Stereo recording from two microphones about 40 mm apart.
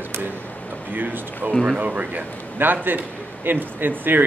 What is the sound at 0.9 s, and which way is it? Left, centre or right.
Speech, right.